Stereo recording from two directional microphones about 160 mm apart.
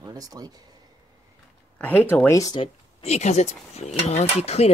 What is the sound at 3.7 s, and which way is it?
Mechanisms, 45° left (ahead or behind).